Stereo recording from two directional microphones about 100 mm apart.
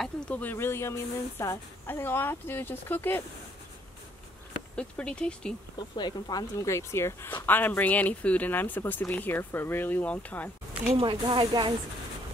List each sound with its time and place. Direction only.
0.3 s speech: 20° left (ahead or behind)
4.7 s speech: 10° left (ahead or behind)
5.9 s speech: 45° left (ahead or behind)
6.7 s speech: 25° left (ahead or behind)
11.0 s speech: 55° right (ahead or behind)